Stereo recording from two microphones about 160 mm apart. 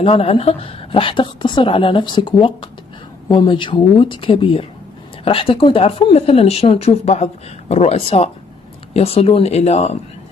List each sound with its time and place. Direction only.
0.0 s speech: 35° left (ahead or behind)